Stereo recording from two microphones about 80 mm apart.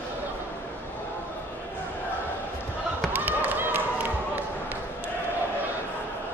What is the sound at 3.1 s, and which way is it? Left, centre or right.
Basketball bounce, right.